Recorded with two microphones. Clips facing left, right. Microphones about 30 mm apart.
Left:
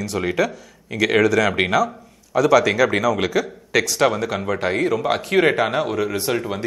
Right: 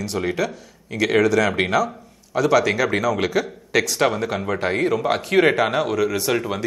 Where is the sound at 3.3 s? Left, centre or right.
Centre.